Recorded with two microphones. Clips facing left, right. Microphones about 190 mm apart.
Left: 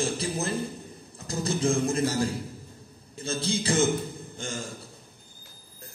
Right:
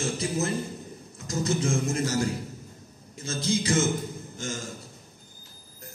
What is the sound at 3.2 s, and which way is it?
Speech, 30° left (ahead or behind).